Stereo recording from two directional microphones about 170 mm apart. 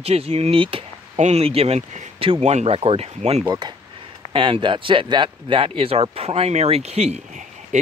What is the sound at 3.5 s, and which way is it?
Speech, 25° right (ahead or behind).